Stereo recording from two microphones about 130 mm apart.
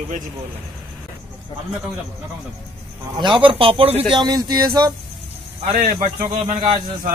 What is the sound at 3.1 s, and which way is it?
Speech, 40° right (ahead or behind).